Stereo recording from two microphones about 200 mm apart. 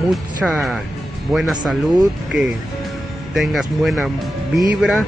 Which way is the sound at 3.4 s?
Centre (ahead or behind).